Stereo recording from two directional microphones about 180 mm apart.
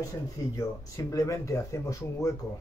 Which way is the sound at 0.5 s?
20° left (ahead or behind).